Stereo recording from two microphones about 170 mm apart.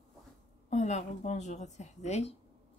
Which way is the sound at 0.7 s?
45° left (ahead or behind).